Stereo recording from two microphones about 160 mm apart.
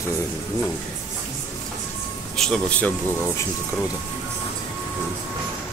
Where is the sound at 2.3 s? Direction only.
5° left (ahead or behind).